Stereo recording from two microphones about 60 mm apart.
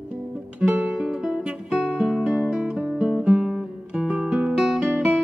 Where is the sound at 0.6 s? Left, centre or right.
Centre.